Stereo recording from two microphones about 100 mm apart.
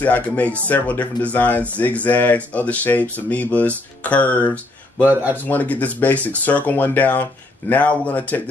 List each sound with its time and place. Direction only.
0.0 s speech: 15° left (ahead or behind)
5.0 s speech: 20° right (ahead or behind)
5.3 s speech: 15° left (ahead or behind)